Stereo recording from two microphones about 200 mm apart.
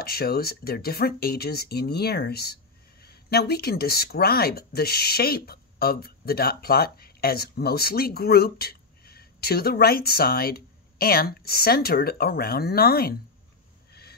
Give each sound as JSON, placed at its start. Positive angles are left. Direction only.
{"t": 0.0, "sound": "speech", "side_deg": 50}